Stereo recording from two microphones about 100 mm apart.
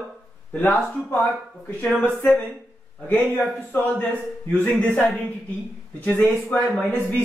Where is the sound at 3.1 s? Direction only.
15° left (ahead or behind).